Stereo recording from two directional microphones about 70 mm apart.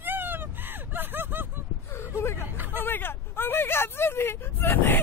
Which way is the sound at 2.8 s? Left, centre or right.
Left.